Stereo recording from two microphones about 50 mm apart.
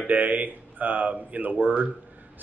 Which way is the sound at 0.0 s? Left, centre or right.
Right.